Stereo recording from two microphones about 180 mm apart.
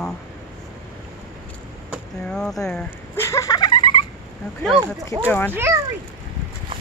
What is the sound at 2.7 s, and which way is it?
Frog, 10° left (ahead or behind).